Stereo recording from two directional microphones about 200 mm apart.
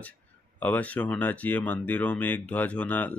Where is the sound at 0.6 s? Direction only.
5° left (ahead or behind).